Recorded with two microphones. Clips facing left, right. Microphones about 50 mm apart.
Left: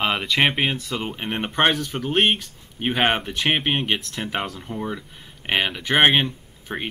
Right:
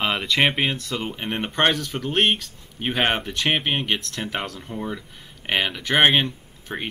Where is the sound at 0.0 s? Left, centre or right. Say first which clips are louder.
Even; centre.